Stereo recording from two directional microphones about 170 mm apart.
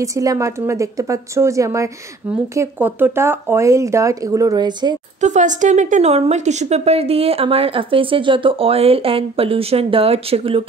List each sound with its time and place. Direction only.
0.0 s speech: 20° right (ahead or behind)
5.2 s a woman's voice: 45° right (ahead or behind)